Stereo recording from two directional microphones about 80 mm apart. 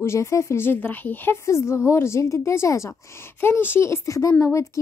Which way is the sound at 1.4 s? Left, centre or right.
Left.